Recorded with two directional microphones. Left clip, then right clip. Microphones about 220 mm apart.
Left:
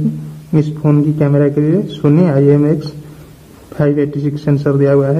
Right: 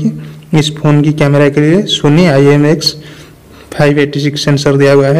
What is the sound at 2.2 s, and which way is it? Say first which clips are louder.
A man's voice: right 4 dB; 35° right (ahead or behind).